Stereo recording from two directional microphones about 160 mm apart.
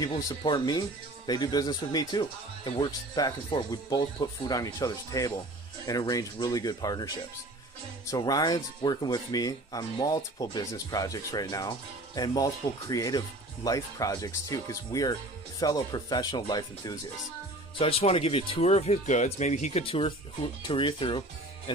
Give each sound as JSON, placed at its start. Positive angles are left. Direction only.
{"t": 0.0, "sound": "speech", "side_deg": 25}
{"t": 8.1, "sound": "speech", "side_deg": 25}
{"t": 17.7, "sound": "speech", "side_deg": 35}